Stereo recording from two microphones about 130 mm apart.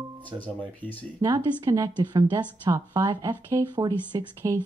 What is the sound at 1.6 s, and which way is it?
A woman's voice, 25° right (ahead or behind).